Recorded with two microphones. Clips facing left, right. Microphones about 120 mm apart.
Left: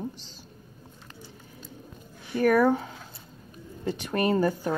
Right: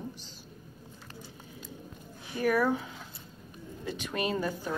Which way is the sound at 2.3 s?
55° left (ahead or behind).